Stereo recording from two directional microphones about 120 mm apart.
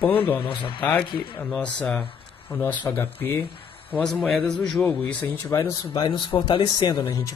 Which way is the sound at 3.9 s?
Centre (ahead or behind).